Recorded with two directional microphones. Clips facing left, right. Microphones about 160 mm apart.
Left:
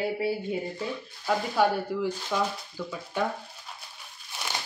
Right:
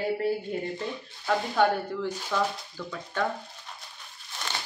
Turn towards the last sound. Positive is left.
turn(degrees=10)  # may be behind; listen again after turning